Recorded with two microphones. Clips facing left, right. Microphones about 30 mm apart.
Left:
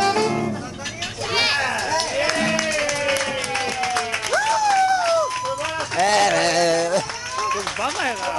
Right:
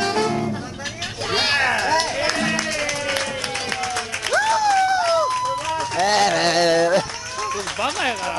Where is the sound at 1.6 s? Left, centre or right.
Right.